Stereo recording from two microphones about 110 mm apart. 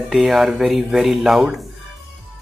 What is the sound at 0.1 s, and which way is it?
Speech, 5° right (ahead or behind).